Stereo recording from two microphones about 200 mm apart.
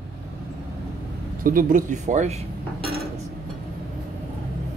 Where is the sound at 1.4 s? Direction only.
45° right (ahead or behind).